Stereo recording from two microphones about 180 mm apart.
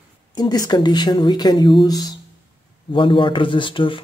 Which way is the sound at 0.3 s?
20° left (ahead or behind).